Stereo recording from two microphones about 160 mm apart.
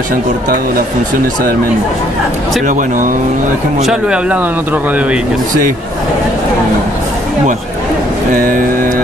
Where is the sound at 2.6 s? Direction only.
55° right (ahead or behind).